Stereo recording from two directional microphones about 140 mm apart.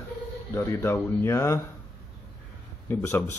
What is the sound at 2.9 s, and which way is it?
Speech, 20° left (ahead or behind).